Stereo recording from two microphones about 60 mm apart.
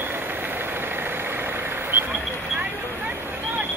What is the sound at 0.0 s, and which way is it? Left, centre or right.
Vehicle, right.